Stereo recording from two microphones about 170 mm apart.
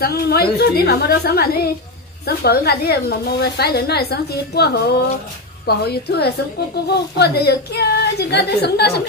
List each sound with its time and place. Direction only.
0.0 s a woman's voice: 65° left (ahead or behind)